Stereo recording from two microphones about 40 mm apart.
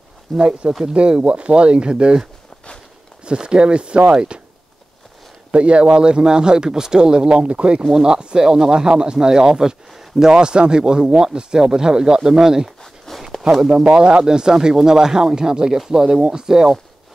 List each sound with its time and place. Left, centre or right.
0.4 s speech: right
3.3 s speech: right
5.5 s speech: right; by 10.3 s centre
10.3 s speech: right
12.8 s a sound: centre
13.4 s speech: centre
13.8 s speech: right